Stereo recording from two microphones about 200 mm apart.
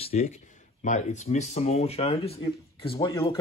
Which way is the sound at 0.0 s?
30° left (ahead or behind).